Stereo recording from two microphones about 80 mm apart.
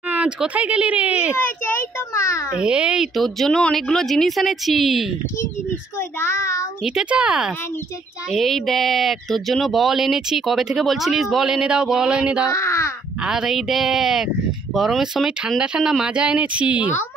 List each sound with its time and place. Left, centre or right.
0.1 s speech: centre
2.1 s a sound: left
2.5 s speech: centre
3.2 s speech: centre
5.9 s child singing: left
6.8 s speech: centre
8.3 s speech: centre
12.5 s baby cry: left
13.2 s speech: centre